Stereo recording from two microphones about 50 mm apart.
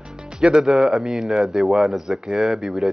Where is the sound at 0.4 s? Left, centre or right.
Centre.